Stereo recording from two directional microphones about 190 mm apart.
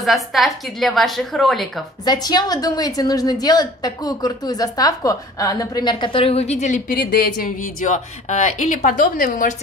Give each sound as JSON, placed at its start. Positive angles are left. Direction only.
{"t": 0.0, "sound": "a woman's voice", "side_deg": 0}
{"t": 2.0, "sound": "a woman's voice", "side_deg": 20}